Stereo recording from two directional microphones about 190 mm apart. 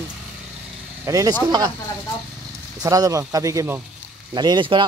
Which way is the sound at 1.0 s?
15° right (ahead or behind).